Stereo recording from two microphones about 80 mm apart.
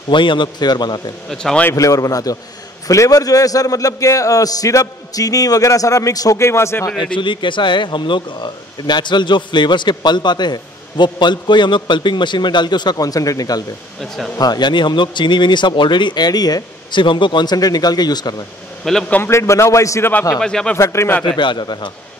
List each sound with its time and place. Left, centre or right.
0.1 s speech: left
1.3 s speech: centre
1.7 s a man's voice: left
6.4 s a man's voice: left
7.2 s speech: left
14.0 s speech: centre
14.4 s speech: left
17.0 s speech: left
18.9 s speech: centre
19.2 s a man's voice: left
20.3 s speech: centre
20.7 s a man's voice: left
21.3 s a man's voice: left